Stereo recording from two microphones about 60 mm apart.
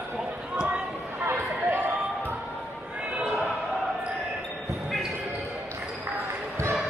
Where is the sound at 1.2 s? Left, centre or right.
Right.